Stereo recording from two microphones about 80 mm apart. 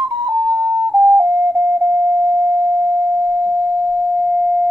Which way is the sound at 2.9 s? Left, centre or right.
Right.